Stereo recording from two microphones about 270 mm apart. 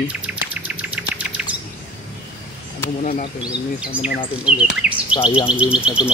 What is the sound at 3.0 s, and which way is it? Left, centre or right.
Speech, left.